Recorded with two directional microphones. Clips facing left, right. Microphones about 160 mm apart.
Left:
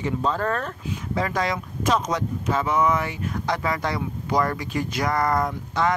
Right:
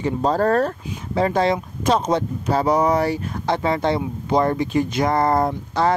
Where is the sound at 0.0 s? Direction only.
40° right (ahead or behind).